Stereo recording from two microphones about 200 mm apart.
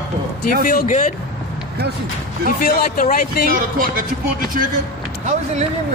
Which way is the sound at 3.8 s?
45° right (ahead or behind).